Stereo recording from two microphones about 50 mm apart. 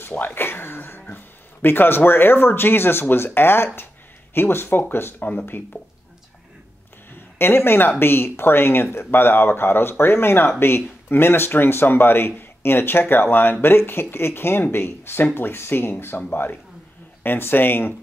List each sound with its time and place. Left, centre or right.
0.2 s a sound: left
1.0 s speech: left
7.3 s speech: left